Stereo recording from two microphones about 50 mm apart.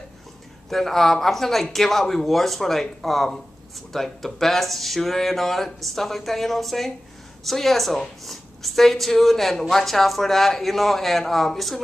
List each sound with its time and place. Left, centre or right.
0.7 s a woman's voice: centre